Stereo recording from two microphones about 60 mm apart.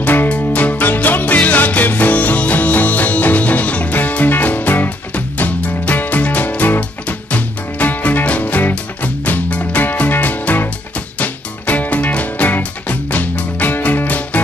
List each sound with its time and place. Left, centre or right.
0.0 s music: left